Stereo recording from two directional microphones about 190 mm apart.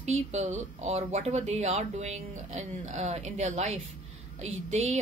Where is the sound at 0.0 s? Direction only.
35° right (ahead or behind).